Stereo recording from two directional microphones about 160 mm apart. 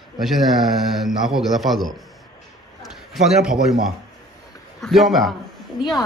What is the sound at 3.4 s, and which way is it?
Speech, 5° right (ahead or behind).